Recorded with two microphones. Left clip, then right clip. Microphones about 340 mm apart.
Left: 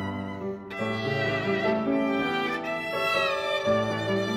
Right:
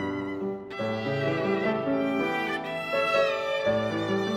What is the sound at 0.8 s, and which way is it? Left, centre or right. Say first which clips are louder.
Music: left 1 dB; centre.